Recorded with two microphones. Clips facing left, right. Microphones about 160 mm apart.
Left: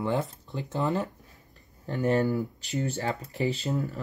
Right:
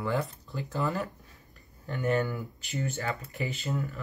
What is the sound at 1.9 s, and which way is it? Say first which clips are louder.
Speech: left 4 dB; 35° left (ahead or behind).